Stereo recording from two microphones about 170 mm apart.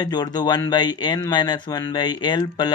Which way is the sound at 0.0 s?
25° left (ahead or behind).